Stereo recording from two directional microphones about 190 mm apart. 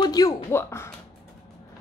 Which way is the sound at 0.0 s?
20° left (ahead or behind).